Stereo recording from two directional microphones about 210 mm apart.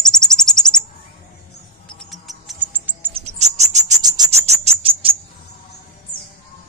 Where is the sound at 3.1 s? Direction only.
30° right (ahead or behind).